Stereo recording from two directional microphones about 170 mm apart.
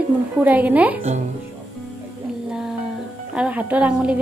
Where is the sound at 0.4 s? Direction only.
10° right (ahead or behind).